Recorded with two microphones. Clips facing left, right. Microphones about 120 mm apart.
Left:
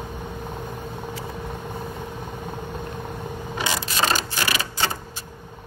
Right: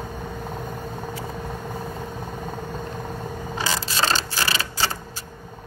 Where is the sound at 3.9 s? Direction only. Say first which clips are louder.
Even; 30° right (ahead or behind).